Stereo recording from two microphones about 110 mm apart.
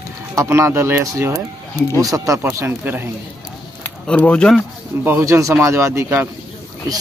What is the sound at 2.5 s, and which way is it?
Speech, 20° right (ahead or behind).